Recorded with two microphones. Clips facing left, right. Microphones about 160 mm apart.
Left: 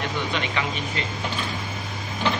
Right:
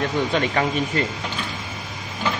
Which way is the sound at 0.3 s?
45° right (ahead or behind).